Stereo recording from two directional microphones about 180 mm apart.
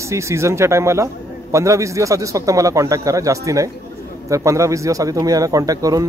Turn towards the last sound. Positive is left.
turn(degrees=-20)  # may be behind; listen again after turning